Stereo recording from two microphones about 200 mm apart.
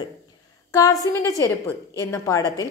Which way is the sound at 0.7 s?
15° left (ahead or behind).